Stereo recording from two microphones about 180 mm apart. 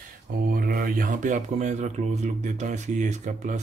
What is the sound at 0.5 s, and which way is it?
Speech, 55° right (ahead or behind).